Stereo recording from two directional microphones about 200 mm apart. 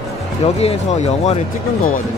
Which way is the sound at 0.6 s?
30° left (ahead or behind).